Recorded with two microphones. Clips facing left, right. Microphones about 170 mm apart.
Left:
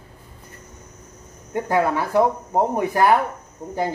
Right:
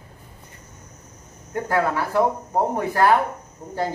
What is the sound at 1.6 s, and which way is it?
Speech, 20° left (ahead or behind).